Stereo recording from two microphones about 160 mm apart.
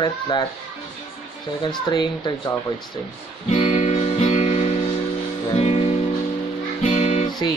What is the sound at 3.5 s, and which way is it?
Guitar, 40° left (ahead or behind).